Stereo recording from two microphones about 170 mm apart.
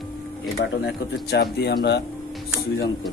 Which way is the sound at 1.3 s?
75° left (ahead or behind).